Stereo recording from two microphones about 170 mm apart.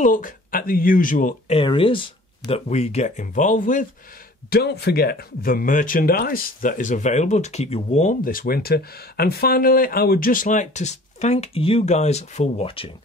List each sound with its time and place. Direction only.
0.0 s speech: 50° left (ahead or behind)
1.6 s speech: 30° left (ahead or behind); by 3.8 s 50° left (ahead or behind)
4.5 s speech: 70° left (ahead or behind); by 12.9 s 30° left (ahead or behind)